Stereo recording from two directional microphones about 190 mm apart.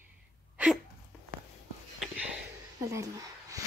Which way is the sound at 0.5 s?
5° right (ahead or behind).